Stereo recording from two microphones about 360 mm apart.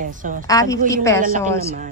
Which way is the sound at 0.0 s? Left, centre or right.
Right.